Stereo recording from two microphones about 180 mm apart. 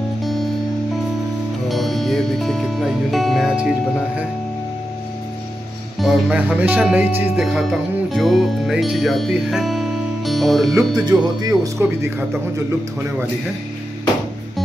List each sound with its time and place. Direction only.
0.2 s music: centre (ahead or behind)
1.7 s music: centre (ahead or behind)
5.9 s speech: 5° right (ahead or behind)
11.1 s speech: 20° right (ahead or behind)